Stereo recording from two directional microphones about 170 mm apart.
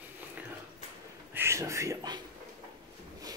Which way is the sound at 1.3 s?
15° right (ahead or behind).